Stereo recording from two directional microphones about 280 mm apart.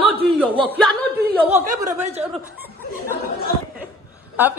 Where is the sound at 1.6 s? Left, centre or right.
Right.